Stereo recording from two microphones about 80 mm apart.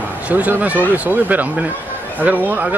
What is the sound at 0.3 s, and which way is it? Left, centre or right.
Speech, right.